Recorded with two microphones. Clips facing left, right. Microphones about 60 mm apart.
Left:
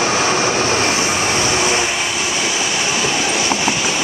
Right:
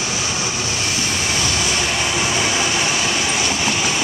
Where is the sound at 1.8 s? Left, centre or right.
Centre.